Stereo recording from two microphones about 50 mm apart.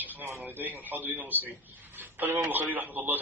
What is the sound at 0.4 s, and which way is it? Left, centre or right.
A man's voice, right.